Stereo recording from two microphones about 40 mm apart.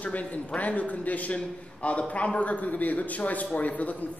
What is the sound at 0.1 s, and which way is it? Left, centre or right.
A man's voice, left.